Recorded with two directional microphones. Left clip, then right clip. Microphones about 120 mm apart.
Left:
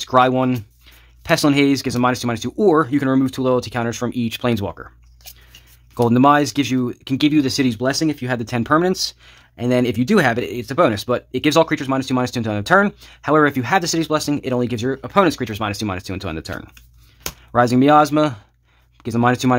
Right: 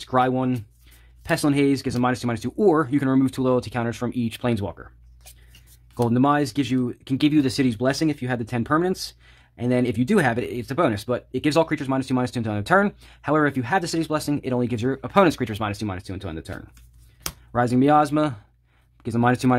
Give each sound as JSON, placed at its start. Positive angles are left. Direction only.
{"t": 0.0, "sound": "speech", "side_deg": 25}
{"t": 6.0, "sound": "speech", "side_deg": 30}
{"t": 7.2, "sound": "speech", "side_deg": 5}
{"t": 15.6, "sound": "speech", "side_deg": 15}
{"t": 16.0, "sound": "speech", "side_deg": 35}
{"t": 17.5, "sound": "speech", "side_deg": 25}